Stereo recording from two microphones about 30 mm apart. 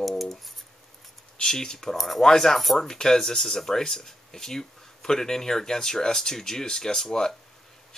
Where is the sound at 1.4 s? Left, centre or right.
Left.